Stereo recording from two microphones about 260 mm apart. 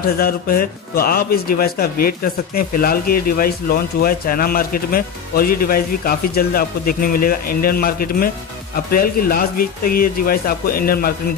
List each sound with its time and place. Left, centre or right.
0.0 s a man's voice: left